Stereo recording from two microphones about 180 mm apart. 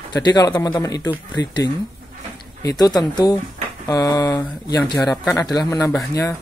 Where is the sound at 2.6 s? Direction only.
20° left (ahead or behind).